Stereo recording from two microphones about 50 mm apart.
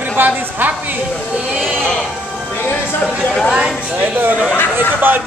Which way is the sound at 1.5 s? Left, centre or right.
Right.